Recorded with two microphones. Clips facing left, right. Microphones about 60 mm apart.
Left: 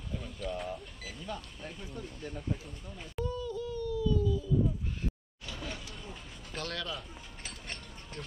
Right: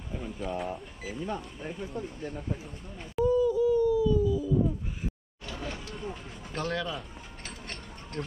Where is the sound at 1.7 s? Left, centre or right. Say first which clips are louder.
Right 8 dB; centre.